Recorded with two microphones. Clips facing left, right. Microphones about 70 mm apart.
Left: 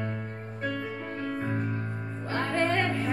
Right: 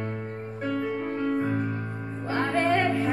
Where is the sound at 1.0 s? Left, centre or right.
Right.